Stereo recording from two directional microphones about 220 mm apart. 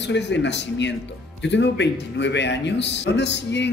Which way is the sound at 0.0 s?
55° left (ahead or behind).